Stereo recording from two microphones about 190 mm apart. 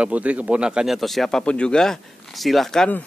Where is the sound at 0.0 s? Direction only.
5° right (ahead or behind).